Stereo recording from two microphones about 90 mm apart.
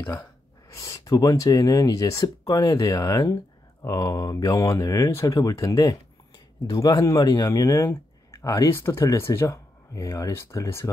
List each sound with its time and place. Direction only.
0.7 s speech: 40° left (ahead or behind)
7.8 s a sound: 30° left (ahead or behind)
8.6 s speech: 30° left (ahead or behind)